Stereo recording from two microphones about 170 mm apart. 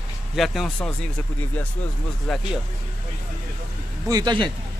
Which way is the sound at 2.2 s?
5° left (ahead or behind).